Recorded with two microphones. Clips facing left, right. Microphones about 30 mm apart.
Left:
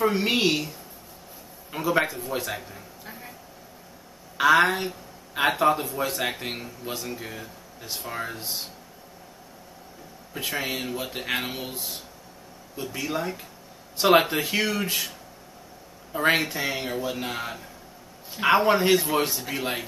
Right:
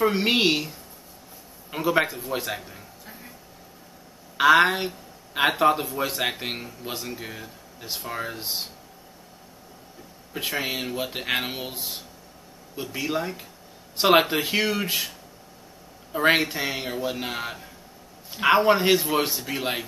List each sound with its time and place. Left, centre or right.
0.0 s a woman's voice: right
1.8 s speech: centre
3.1 s vehicle: centre
4.4 s a woman's voice: centre
8.1 s speech: centre
8.4 s a woman's voice: right
10.3 s speech: centre
16.3 s speech: centre